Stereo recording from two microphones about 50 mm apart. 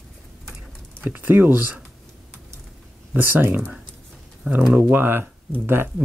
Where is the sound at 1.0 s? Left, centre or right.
Right.